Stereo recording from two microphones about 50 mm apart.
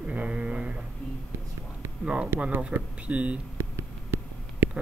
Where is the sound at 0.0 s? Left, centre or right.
Right.